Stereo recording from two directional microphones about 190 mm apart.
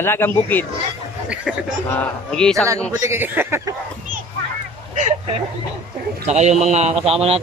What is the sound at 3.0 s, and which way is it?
Speech, 10° right (ahead or behind).